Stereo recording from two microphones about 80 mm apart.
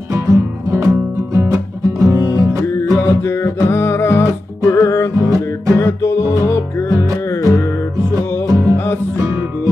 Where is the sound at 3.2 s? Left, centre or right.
Left.